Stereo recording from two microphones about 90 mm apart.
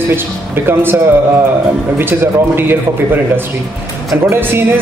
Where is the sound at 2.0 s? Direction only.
25° right (ahead or behind).